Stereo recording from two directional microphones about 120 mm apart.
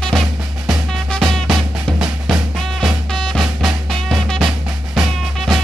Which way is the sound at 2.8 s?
5° left (ahead or behind).